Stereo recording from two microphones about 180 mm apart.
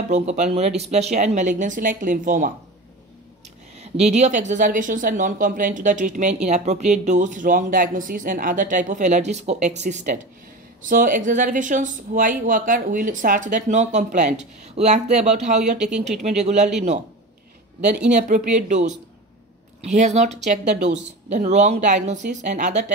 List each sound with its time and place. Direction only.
0.1 s a woman's voice: 40° right (ahead or behind)
3.7 s a woman's voice: 35° right (ahead or behind)
17.7 s speech: 5° right (ahead or behind)
18.1 s a woman's voice: 45° right (ahead or behind)